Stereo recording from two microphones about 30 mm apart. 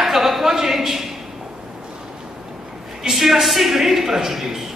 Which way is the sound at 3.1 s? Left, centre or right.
Centre.